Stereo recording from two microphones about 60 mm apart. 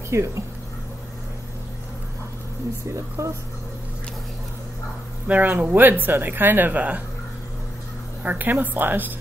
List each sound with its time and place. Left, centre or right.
0.1 s speech: right
3.2 s speech: right
5.3 s speech: right
8.2 s speech: right